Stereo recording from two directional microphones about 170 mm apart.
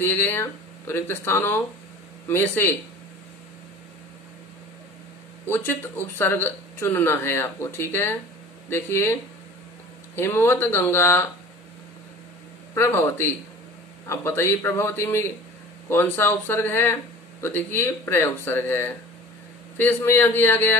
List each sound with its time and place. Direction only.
0.0 s speech: 10° left (ahead or behind)
5.5 s speech: 10° left (ahead or behind)
12.7 s speech: 15° left (ahead or behind)